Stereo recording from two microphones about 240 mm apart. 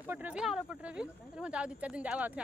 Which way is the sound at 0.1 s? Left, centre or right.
Centre.